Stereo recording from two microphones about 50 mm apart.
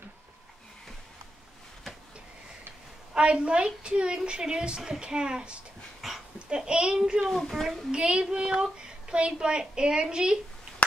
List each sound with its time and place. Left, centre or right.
3.2 s a woman's voice: right
5.9 s dog: centre
6.5 s a woman's voice: centre
7.2 s speech: centre
7.9 s a woman's voice: centre